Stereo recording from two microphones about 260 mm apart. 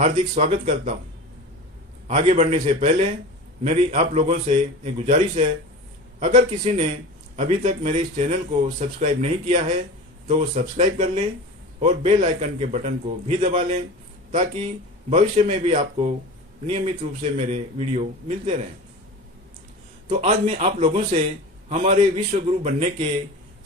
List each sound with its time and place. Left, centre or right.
0.0 s speech: right
2.0 s speech: right
15.0 s speech: right
20.1 s speech: right